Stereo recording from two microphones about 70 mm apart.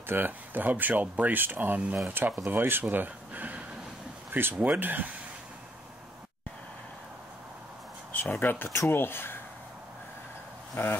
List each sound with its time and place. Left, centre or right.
0.0 s speech: right
8.2 s speech: left
10.8 s speech: left